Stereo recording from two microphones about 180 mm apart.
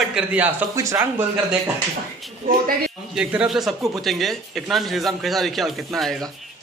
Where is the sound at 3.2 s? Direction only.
5° right (ahead or behind).